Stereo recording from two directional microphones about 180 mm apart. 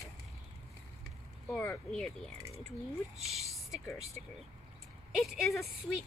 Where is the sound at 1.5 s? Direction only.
10° left (ahead or behind).